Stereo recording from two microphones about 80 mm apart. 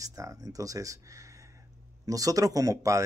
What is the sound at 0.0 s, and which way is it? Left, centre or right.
Speech, right.